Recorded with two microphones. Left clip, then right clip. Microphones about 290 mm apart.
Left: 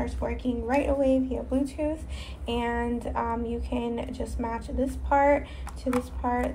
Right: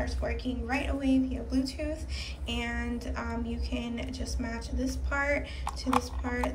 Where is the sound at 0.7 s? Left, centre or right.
Centre.